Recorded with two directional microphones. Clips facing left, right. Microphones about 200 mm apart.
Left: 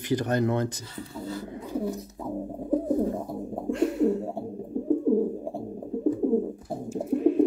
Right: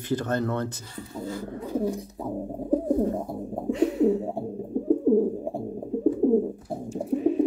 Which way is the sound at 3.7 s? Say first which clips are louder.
Right 2 dB; centre (ahead or behind).